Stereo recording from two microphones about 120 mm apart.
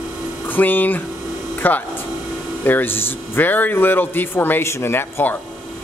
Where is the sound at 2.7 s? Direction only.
15° left (ahead or behind).